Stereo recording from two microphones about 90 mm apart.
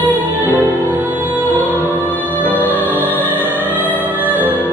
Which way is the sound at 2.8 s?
20° left (ahead or behind).